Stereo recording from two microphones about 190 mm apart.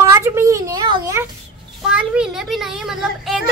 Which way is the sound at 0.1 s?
15° right (ahead or behind).